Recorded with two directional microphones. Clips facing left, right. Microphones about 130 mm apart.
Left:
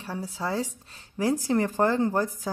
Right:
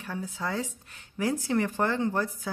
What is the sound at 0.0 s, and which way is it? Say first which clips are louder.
Speech: left 2 dB; 30° left (ahead or behind).